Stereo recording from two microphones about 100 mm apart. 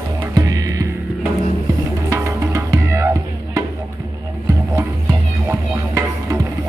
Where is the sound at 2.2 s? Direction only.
30° right (ahead or behind).